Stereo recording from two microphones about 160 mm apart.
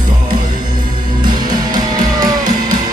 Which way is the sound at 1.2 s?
25° right (ahead or behind).